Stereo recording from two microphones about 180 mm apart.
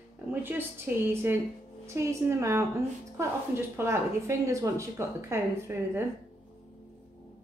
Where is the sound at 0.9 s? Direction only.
10° right (ahead or behind).